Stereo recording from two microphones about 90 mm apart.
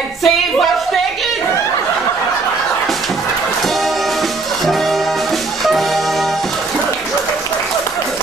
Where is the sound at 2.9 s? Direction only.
Centre (ahead or behind).